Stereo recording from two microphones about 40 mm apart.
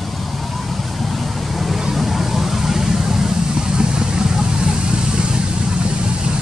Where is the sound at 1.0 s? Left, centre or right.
Centre; by 6.4 s right.